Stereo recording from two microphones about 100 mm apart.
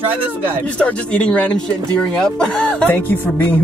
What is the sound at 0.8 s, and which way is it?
Speech, 10° left (ahead or behind).